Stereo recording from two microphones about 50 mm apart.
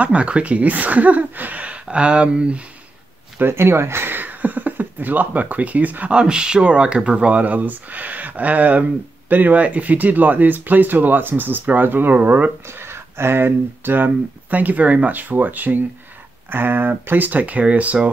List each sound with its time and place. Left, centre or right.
0.0 s speech: right
3.3 s speech: right
6.1 s speech: centre; by 12.5 s right
12.6 s speech: right